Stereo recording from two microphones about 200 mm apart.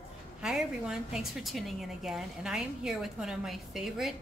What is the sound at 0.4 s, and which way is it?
A woman's voice, 5° right (ahead or behind).